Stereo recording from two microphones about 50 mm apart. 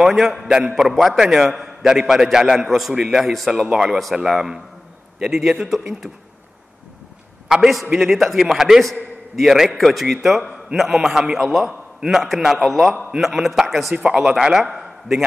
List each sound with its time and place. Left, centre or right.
0.0 s a man's voice: centre
0.5 s a man's voice: centre
3.6 s a man's voice: centre
7.4 s a man's voice: centre
14.1 s a man's voice: centre
14.8 s a sound: centre